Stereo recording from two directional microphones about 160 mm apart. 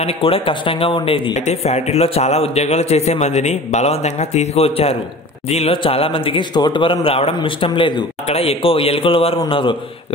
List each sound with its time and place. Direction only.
0.0 s speech: 35° left (ahead or behind)